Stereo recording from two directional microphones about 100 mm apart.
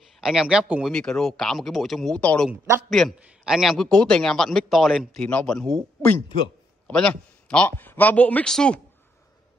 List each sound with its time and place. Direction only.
0.2 s a man's voice: 5° right (ahead or behind)
0.8 s a man's voice: 5° left (ahead or behind)
2.1 s speech: 10° left (ahead or behind)
2.9 s a man's voice: centre (ahead or behind)
6.9 s speech: 10° left (ahead or behind)
8.5 s speech: 5° left (ahead or behind)